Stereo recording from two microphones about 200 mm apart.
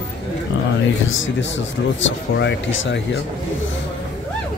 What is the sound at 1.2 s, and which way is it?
Speech, 70° left (ahead or behind).